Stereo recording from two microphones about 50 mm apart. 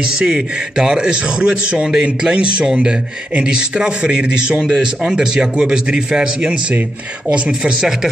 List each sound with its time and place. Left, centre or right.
0.2 s a man's voice: centre